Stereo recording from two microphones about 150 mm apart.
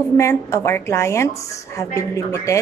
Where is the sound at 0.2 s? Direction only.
20° left (ahead or behind).